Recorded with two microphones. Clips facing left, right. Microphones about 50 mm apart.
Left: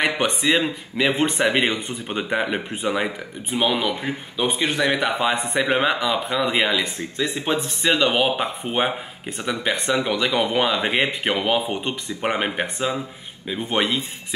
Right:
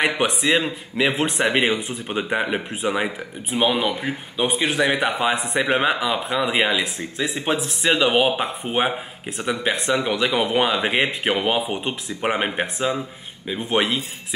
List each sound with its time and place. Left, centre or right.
0.0 s speech: centre